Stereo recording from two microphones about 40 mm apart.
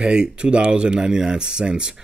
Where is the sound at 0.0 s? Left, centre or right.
Right.